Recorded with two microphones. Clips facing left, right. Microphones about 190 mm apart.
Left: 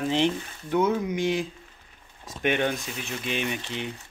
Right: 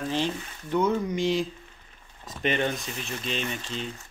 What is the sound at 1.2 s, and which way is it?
Speech, 55° left (ahead or behind).